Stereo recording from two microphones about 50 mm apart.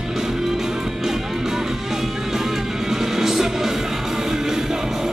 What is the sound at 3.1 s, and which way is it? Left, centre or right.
Music, centre.